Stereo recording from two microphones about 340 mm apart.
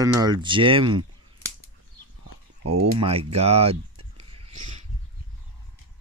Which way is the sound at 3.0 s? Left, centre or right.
Centre.